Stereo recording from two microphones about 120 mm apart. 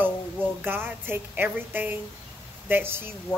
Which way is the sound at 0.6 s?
15° right (ahead or behind).